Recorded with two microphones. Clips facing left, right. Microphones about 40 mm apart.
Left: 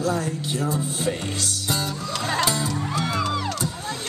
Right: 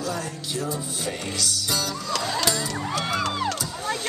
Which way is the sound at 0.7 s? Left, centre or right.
Left.